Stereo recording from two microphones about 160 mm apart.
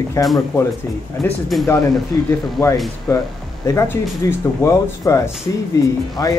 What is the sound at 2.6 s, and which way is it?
Speech, 20° left (ahead or behind).